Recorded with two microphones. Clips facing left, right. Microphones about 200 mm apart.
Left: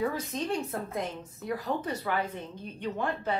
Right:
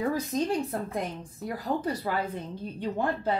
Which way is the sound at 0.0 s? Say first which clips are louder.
Right 3 dB; 40° right (ahead or behind).